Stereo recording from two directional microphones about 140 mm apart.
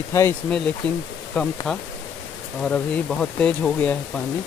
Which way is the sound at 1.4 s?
10° left (ahead or behind).